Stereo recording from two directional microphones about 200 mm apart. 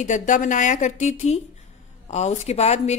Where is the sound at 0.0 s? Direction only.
35° left (ahead or behind).